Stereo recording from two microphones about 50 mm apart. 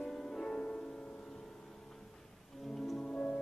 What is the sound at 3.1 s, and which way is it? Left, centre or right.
Music, centre.